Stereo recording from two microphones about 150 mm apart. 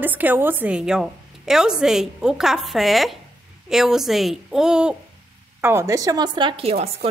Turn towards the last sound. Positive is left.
turn(degrees=-40)  # may be behind; listen again after turning